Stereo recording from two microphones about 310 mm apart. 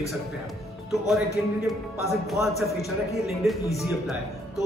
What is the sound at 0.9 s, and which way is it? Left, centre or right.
A man's voice, centre.